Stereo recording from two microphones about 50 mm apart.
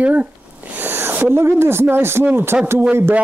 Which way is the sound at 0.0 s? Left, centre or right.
Right.